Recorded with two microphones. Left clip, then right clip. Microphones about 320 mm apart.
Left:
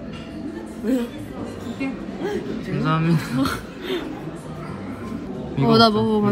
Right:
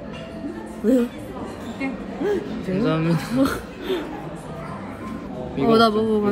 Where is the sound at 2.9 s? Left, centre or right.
Centre.